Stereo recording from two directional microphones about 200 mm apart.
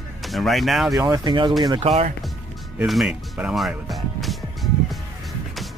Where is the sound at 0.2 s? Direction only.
Centre (ahead or behind).